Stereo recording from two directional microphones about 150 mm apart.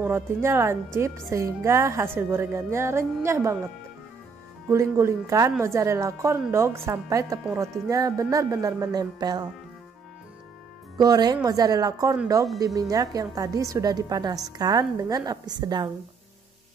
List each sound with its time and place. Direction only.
0.0 s a woman's voice: 15° right (ahead or behind)
4.6 s speech: 15° right (ahead or behind)
11.0 s speech: 25° right (ahead or behind)